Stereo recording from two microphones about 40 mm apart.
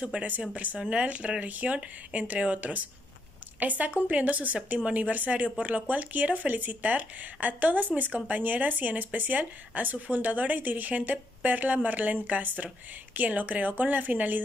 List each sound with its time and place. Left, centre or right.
0.1 s a woman's voice: right